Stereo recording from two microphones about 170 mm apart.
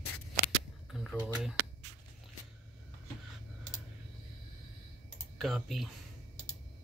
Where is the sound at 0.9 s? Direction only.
Centre (ahead or behind).